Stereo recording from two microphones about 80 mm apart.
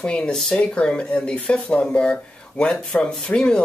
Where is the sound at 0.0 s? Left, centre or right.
Centre.